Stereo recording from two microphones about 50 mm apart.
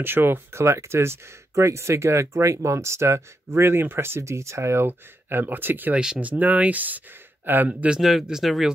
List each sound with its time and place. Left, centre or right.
0.0 s speech: right
0.6 s speech: right
4.2 s speech: right
4.8 s speech: right
5.9 s speech: centre
6.2 s speech: right
8.0 s speech: centre